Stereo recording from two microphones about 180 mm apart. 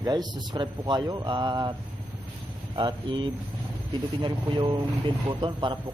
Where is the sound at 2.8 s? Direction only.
25° right (ahead or behind).